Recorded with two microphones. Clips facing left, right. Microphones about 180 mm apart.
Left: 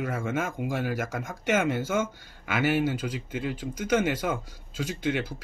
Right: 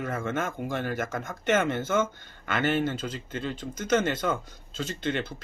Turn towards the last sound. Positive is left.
turn(degrees=10)  # may be behind; listen again after turning